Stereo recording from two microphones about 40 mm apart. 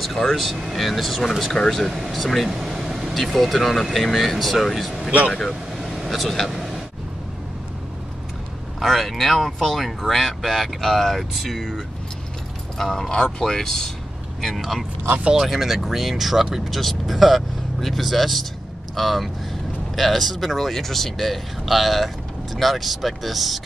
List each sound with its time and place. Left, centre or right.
0.3 s speech: centre
2.6 s air conditioning: centre
3.3 s speech: centre
5.8 s vehicle: centre
6.0 s speech: centre
8.7 s speech: centre